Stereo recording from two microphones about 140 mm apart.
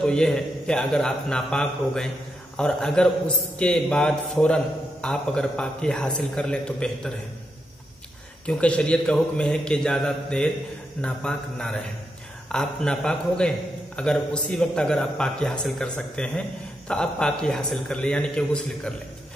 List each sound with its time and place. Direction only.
0.0 s a man's voice: 5° left (ahead or behind)
8.5 s a man's voice: 10° left (ahead or behind)